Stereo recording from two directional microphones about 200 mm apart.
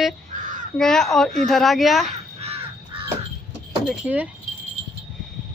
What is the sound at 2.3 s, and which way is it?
Crow, 30° right (ahead or behind).